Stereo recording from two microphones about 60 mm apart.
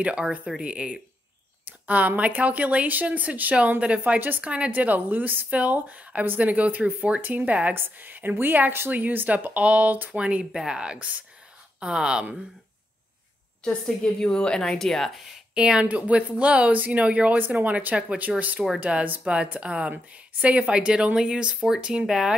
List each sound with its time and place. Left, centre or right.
0.0 s a woman's voice: centre
13.8 s a woman's voice: centre
15.5 s speech: centre